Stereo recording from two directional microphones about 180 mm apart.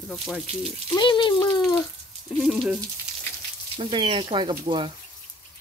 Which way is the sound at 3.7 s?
30° right (ahead or behind).